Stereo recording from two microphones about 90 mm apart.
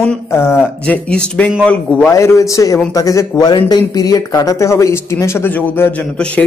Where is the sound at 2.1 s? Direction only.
35° left (ahead or behind); by 6.4 s 10° left (ahead or behind).